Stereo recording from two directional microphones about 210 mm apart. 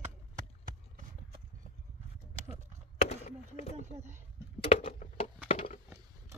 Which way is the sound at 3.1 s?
30° left (ahead or behind).